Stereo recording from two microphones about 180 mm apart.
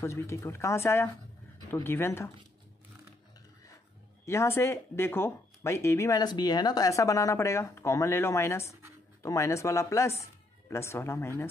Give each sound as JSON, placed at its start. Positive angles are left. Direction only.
{"t": 0.0, "sound": "speech", "side_deg": 15}
{"t": 4.3, "sound": "speech", "side_deg": 15}